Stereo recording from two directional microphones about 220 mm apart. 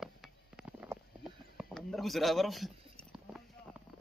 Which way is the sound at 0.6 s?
5° right (ahead or behind).